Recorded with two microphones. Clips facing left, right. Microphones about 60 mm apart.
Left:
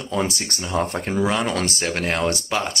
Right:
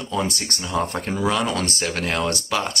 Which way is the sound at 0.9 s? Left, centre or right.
Centre.